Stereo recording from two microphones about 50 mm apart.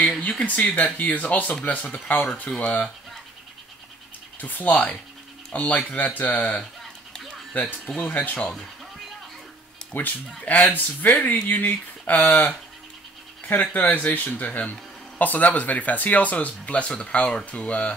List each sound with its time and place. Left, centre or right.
0.2 s speech: left
2.6 s speech: left
4.4 s speech: left
7.5 s speech: left
7.9 s speech: left
9.9 s speech: left
13.5 s speech: left